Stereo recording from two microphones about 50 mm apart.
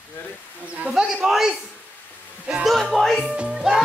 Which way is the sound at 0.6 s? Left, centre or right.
Right.